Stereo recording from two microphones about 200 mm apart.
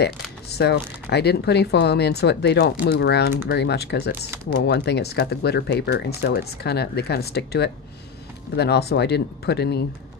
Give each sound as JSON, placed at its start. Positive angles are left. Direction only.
{"t": 0.6, "sound": "speech", "side_deg": 55}